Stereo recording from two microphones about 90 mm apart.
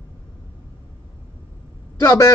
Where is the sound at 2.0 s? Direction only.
40° left (ahead or behind).